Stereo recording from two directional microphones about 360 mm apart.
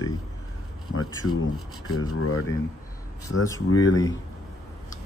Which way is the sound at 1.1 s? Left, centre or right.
Centre.